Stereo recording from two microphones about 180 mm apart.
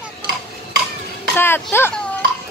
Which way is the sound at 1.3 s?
10° left (ahead or behind).